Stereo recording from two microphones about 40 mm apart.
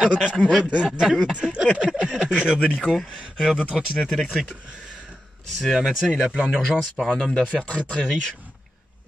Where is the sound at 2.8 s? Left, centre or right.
Centre.